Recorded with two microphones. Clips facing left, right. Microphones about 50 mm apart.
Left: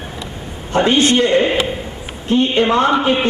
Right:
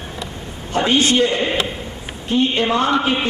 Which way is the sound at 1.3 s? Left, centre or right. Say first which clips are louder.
Left 5 dB; centre.